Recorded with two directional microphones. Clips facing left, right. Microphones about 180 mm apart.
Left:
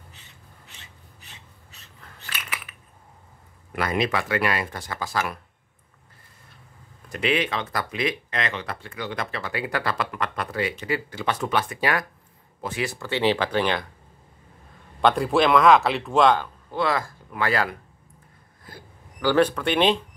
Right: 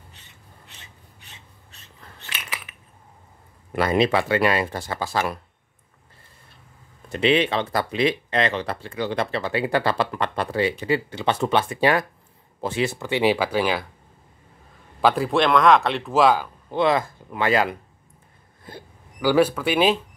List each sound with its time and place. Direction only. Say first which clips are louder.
3.7 s speech: right 5 dB; 30° right (ahead or behind)
7.1 s speech: right 5 dB; 25° right (ahead or behind); by 13.8 s 5° right (ahead or behind)
15.0 s speech: even; 5° right (ahead or behind)
16.7 s speech: right 4 dB; 20° right (ahead or behind)
19.2 s speech: right 2 dB; 10° right (ahead or behind)